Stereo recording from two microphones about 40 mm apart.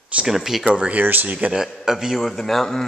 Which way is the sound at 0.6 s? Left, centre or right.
Right.